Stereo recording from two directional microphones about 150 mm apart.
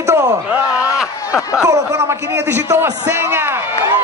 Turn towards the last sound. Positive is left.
turn(degrees=-15)  # may be behind; listen again after turning